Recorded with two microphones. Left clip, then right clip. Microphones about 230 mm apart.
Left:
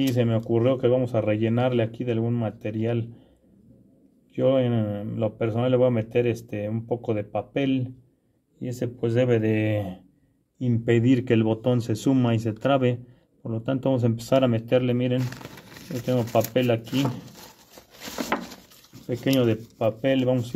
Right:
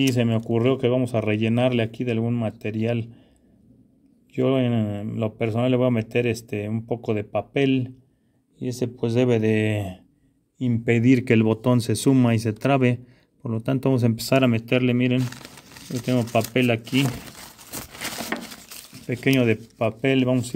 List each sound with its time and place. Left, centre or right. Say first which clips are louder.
0.1 s speech: even; right
4.3 s speech: left 1 dB; right
9.3 s speech: right 1 dB; right
19.0 s speech: right 2 dB; right